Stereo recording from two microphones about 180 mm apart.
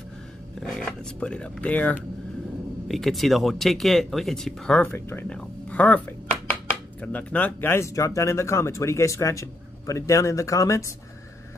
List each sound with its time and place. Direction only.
0.6 s speech: centre (ahead or behind); by 10.9 s 15° left (ahead or behind)